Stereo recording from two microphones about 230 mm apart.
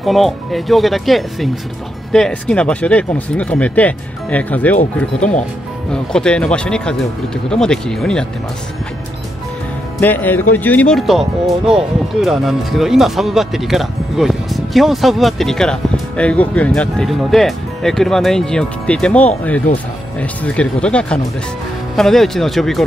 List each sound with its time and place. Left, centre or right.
0.0 s speech: centre
5.9 s speech: centre
9.9 s speech: centre